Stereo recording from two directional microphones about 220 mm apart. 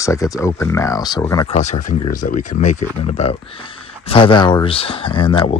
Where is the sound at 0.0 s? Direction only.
15° left (ahead or behind).